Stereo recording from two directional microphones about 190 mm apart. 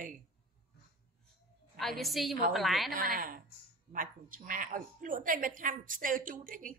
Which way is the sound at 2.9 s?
50° right (ahead or behind).